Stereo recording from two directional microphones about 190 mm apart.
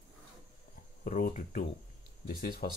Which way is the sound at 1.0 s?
45° left (ahead or behind).